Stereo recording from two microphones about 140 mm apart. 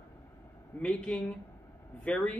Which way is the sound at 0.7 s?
10° left (ahead or behind).